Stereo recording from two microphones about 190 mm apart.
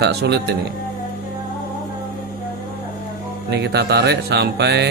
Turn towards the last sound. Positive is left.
turn(degrees=-60)  # may be behind; listen again after turning